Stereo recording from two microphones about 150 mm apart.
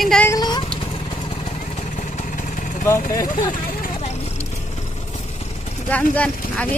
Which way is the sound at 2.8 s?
20° left (ahead or behind).